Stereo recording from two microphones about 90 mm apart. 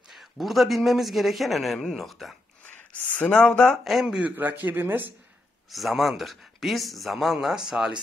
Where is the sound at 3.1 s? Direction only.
15° left (ahead or behind).